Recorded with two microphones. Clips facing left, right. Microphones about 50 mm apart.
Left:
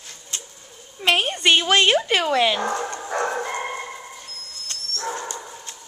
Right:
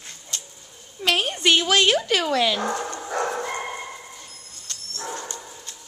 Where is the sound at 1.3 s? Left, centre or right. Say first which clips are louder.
Left 1 dB; centre.